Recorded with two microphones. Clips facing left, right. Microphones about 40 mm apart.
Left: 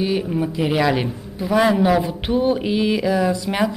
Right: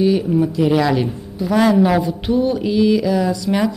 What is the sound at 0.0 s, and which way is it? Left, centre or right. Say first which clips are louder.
A woman's voice: right 5 dB; centre.